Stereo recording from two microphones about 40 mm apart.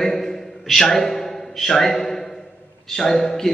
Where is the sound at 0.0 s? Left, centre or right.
Centre.